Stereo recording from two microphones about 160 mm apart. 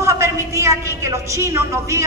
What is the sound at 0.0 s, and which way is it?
A man's voice, 15° right (ahead or behind).